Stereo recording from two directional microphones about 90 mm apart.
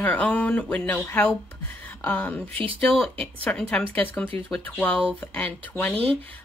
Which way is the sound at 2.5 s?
90° right.